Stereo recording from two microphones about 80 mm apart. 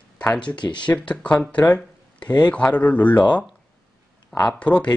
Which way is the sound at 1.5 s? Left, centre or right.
Centre.